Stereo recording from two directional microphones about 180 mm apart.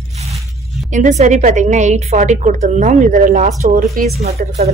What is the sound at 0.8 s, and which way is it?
A woman's voice, 40° right (ahead or behind).